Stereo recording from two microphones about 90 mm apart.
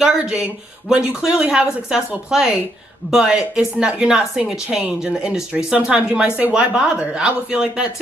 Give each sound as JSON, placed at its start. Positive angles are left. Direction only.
{"t": 0.0, "sound": "a woman's voice", "side_deg": -5}